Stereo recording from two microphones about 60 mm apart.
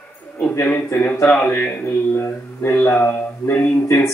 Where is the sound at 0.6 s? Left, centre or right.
Centre.